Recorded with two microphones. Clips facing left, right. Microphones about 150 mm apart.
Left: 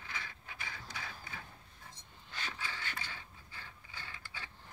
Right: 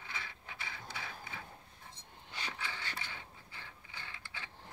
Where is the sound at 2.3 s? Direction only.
20° right (ahead or behind).